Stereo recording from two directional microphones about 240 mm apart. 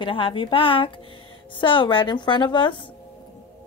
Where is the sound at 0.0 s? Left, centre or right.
Left.